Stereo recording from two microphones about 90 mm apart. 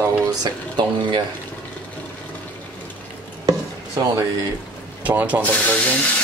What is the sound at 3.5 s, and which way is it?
Chopping, 40° right (ahead or behind).